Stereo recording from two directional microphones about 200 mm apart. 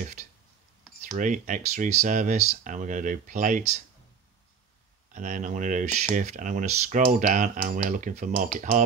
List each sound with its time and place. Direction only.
1.1 s speech: 40° right (ahead or behind)
5.1 s speech: 40° right (ahead or behind)